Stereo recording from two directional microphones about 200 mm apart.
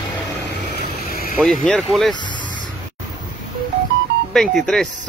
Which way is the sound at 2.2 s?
25° left (ahead or behind).